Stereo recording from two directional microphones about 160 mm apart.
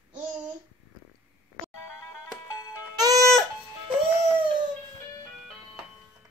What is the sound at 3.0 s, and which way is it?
Music, 25° right (ahead or behind).